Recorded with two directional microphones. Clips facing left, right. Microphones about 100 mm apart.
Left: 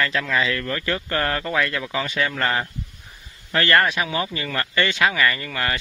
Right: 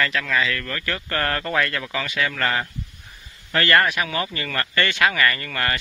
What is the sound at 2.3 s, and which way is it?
A man's voice, 20° left (ahead or behind).